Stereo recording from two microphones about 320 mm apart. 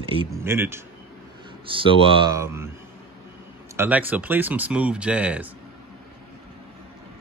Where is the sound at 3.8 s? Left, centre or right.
Centre.